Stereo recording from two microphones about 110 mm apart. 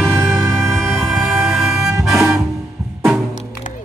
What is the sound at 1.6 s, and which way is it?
Music, 25° right (ahead or behind).